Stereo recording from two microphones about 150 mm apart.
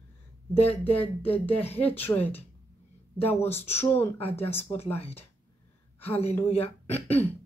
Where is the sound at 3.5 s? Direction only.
15° left (ahead or behind).